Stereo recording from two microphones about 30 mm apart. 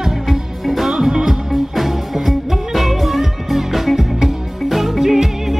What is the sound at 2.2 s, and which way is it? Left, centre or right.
Music, centre.